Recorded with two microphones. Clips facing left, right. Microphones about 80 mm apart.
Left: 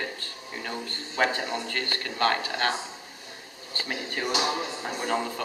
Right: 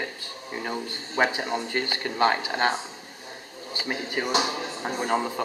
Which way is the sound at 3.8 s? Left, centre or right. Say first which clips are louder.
Right 3 dB; centre.